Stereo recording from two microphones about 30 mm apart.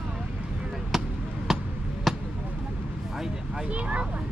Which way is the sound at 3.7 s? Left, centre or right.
Right.